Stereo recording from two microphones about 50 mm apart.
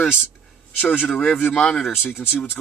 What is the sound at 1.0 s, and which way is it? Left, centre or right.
Speech, left.